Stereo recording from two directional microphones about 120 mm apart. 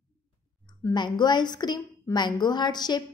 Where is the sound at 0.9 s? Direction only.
40° left (ahead or behind).